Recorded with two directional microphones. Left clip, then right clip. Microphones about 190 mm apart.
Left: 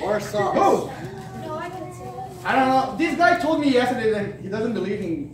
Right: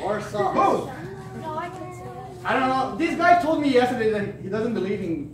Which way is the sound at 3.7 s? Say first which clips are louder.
Left 1 dB; centre (ahead or behind).